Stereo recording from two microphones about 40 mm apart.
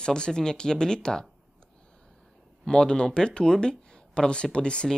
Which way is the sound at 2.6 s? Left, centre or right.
Left.